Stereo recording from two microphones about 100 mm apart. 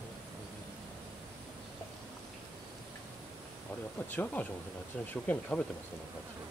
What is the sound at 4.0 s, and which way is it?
Speech, 20° left (ahead or behind).